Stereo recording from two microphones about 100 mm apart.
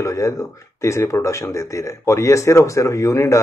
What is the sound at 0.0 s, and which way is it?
A man's voice, 30° left (ahead or behind).